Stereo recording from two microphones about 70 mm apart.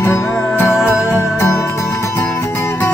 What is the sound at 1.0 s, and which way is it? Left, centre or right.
Music, left.